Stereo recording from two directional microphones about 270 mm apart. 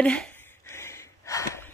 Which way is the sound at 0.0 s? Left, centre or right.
Centre.